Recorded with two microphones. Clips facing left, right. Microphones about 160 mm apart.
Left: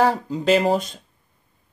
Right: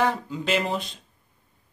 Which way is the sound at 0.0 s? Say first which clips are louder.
Left 5 dB; 40° left (ahead or behind).